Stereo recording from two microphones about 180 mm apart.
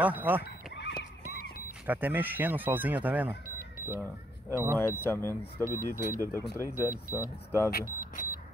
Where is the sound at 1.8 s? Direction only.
10° right (ahead or behind).